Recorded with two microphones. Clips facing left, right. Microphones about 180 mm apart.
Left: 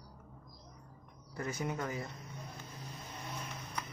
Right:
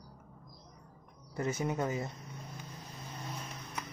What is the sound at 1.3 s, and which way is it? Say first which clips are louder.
Speech: right 4 dB; 25° right (ahead or behind).